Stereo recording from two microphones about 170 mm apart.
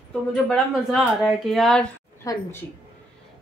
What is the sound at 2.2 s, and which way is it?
Speech, 15° left (ahead or behind).